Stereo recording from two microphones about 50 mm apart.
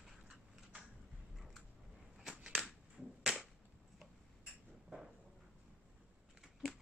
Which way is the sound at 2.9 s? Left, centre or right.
Centre.